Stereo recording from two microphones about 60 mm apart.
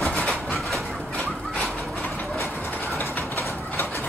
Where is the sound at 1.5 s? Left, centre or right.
Centre.